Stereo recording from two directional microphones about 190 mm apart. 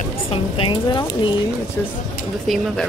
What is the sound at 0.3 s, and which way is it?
Speech, 25° left (ahead or behind).